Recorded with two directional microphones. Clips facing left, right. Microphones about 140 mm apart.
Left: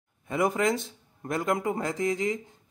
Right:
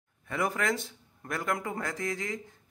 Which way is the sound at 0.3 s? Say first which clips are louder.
Left 5 dB; 20° left (ahead or behind).